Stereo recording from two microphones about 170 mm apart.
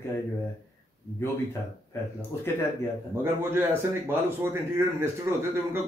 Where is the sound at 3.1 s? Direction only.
15° right (ahead or behind).